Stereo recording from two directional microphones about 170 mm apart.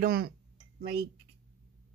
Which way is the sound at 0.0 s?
65° right (ahead or behind).